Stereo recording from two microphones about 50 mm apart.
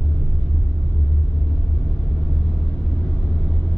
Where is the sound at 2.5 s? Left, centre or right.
Centre.